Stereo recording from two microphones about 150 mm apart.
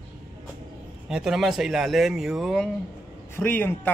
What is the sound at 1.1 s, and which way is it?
A man's voice, 5° right (ahead or behind).